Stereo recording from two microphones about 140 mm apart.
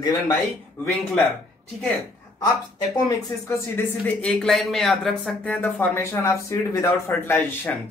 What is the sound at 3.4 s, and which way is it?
Speech, 15° left (ahead or behind).